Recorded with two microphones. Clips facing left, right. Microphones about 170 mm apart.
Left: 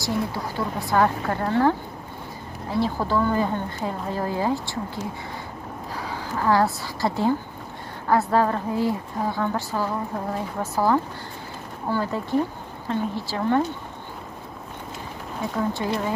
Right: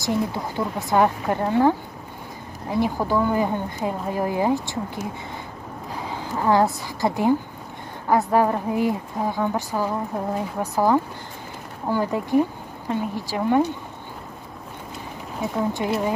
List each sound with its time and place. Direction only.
0.0 s a woman's voice: 20° right (ahead or behind)
15.5 s speech: 20° right (ahead or behind)